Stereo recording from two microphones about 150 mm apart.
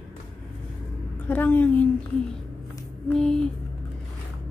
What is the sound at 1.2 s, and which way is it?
Speech, 10° left (ahead or behind).